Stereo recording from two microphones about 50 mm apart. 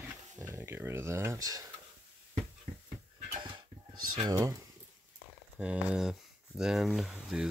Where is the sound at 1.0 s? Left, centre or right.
Right.